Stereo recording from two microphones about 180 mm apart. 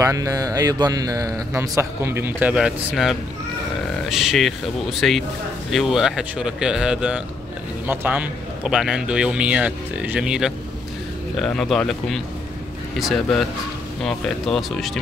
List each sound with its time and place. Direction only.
0.0 s a man's voice: 20° right (ahead or behind); by 14.9 s centre (ahead or behind)